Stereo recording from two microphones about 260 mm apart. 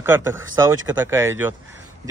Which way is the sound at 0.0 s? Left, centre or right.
Centre.